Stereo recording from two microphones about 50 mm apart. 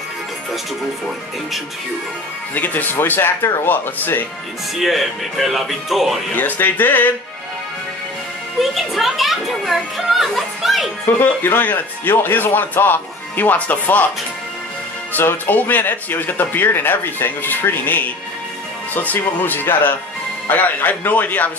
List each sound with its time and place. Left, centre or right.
2.5 s speech: left
4.7 s speech: centre
6.3 s speech: left
8.5 s speech: centre
11.1 s speech: left
15.1 s speech: left